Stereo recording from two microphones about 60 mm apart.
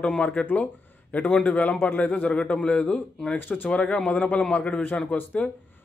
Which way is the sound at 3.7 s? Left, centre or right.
Centre.